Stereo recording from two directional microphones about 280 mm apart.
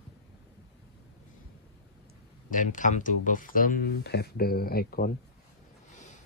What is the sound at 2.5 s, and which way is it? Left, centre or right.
Speech, left.